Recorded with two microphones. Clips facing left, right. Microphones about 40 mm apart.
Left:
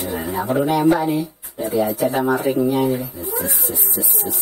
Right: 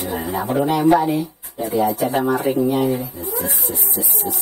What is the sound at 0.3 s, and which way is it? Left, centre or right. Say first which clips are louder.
Speech: left 1 dB; right.